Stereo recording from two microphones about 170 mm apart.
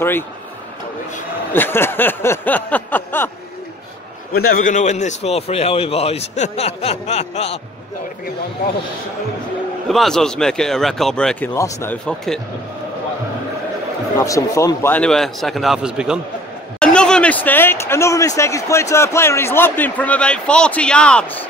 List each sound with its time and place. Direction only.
1.5 s speech: 15° left (ahead or behind)
4.3 s a man's voice: 55° left (ahead or behind); by 7.6 s 40° left (ahead or behind)
9.8 s speech: centre (ahead or behind)
14.1 s speech: 20° left (ahead or behind)